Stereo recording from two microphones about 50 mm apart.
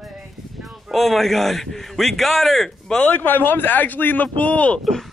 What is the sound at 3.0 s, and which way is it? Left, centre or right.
A man's voice, left.